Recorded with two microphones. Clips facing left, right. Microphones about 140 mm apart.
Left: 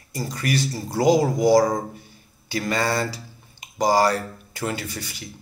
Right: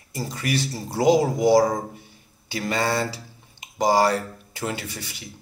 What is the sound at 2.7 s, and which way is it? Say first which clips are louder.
Speech: even; 25° right (ahead or behind).